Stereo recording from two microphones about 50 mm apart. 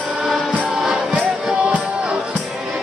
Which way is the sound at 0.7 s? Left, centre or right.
Centre.